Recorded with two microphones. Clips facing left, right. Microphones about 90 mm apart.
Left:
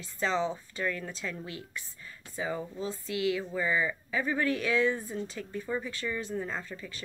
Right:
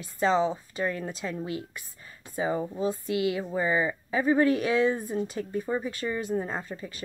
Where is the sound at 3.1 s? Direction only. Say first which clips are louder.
Right 3 dB; 30° right (ahead or behind); by 6.4 s 15° right (ahead or behind).